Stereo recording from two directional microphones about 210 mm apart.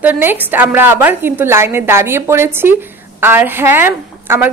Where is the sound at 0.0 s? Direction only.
10° right (ahead or behind).